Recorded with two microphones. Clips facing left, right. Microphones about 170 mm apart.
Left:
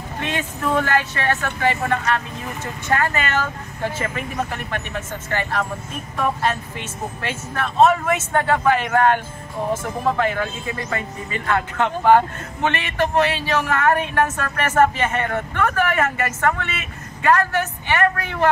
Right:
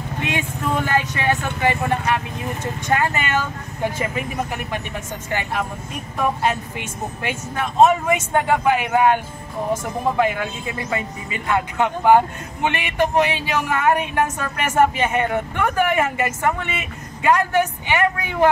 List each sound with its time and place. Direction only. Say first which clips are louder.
0.3 s speech: left 2 dB; 15° right (ahead or behind)